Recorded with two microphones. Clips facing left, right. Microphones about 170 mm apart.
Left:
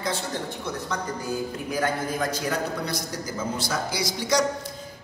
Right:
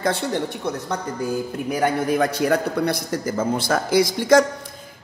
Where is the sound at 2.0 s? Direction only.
65° right (ahead or behind).